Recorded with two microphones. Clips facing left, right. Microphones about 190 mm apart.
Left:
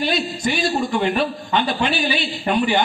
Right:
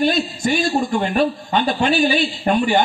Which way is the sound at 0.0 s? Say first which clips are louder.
Right 3 dB; 50° right (ahead or behind).